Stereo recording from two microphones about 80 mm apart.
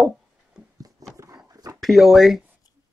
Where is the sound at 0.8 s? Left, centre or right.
Right.